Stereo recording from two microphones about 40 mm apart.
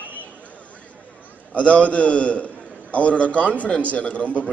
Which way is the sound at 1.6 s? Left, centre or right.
Left.